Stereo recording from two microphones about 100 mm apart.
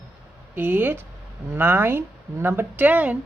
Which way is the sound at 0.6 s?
20° right (ahead or behind).